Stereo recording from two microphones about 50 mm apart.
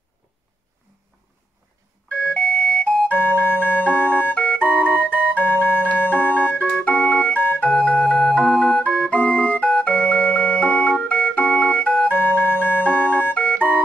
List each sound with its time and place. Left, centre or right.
2.1 s doorbell: left
3.1 s organ: left
4.3 s organ: left
12.1 s music: left